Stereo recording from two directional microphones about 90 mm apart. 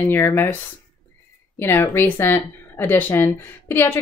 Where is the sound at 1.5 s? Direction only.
25° left (ahead or behind).